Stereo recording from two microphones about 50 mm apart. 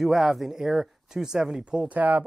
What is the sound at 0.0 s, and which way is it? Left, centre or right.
A man's voice, centre.